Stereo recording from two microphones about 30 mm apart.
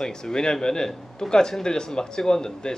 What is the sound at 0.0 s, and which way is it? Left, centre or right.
Speech, left.